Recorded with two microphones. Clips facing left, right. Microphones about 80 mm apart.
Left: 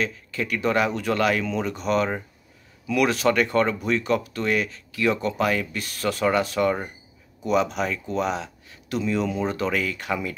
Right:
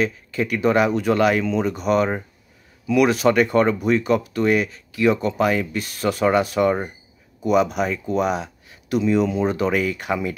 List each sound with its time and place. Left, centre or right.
0.0 s speech: centre